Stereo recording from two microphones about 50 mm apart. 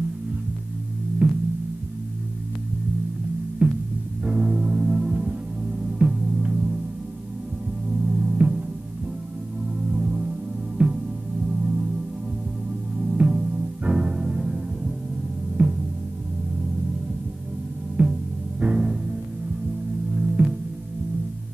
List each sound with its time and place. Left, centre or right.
1.2 s music: right
3.6 s music: right
7.9 s music: centre
9.8 s music: right
12.9 s music: right
15.6 s music: right
18.0 s music: right
20.4 s music: right